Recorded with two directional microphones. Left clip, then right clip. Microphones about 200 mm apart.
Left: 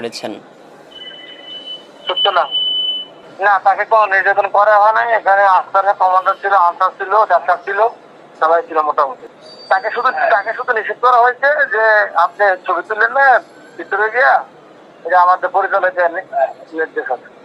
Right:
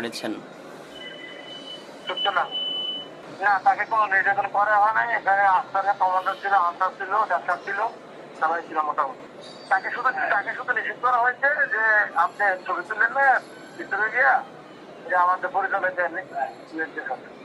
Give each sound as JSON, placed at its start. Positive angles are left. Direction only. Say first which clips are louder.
{"t": 0.0, "sound": "speech", "louder": "left 7 dB", "side_deg": 30}
{"t": 2.0, "sound": "speech", "louder": "left 10 dB", "side_deg": 40}